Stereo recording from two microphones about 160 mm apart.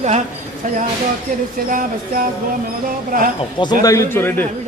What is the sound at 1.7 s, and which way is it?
Speech, 60° right (ahead or behind).